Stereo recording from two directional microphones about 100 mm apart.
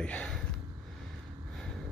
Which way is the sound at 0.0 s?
10° left (ahead or behind).